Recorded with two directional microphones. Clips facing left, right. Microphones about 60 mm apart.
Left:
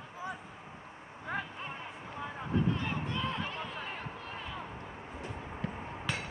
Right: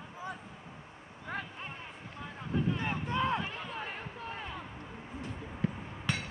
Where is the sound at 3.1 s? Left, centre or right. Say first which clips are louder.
Right 5 dB; right.